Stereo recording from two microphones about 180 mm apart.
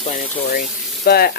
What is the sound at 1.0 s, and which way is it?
Frying, 60° left (ahead or behind).